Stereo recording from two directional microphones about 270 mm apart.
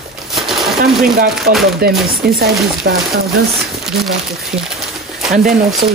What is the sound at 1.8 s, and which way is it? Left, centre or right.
Speech, right.